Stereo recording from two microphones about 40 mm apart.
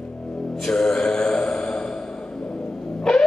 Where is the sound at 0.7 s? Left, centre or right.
Centre.